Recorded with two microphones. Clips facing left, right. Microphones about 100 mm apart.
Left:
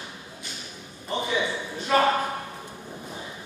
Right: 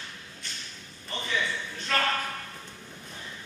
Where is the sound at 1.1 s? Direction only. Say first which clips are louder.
Left 5 dB; 15° left (ahead or behind).